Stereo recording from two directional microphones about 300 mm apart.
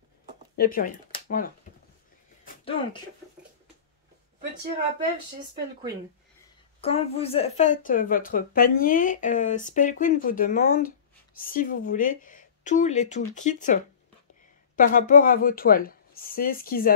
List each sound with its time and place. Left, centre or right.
0.6 s speech: left
1.1 s a sound: left
6.8 s speech: centre
14.8 s speech: left